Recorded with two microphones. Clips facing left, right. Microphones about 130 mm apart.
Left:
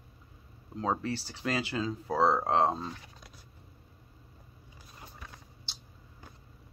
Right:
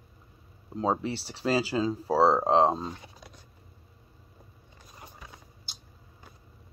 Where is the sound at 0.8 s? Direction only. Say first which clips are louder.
Right 3 dB; 25° right (ahead or behind).